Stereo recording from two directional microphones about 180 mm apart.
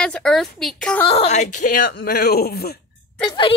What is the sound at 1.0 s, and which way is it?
Speech, 35° left (ahead or behind).